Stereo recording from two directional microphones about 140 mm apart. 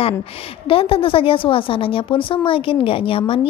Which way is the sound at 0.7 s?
40° left (ahead or behind).